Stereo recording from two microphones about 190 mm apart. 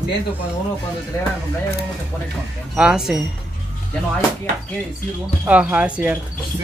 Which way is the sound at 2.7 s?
5° right (ahead or behind).